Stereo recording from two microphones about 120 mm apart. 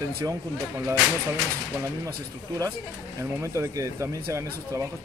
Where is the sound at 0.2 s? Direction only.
25° right (ahead or behind).